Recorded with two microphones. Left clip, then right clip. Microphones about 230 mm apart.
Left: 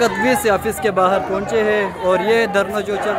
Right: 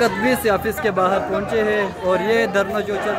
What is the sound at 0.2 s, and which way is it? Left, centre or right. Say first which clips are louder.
A man's voice: left 2 dB; centre.